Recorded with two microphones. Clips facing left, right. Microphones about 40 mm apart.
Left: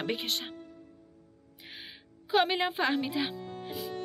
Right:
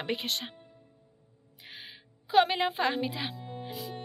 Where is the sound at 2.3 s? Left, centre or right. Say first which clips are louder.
Right 2 dB; centre.